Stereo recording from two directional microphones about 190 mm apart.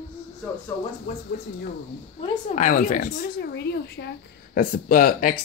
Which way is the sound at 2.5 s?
45° left (ahead or behind).